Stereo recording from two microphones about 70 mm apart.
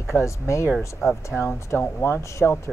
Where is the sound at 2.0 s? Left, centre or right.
Left.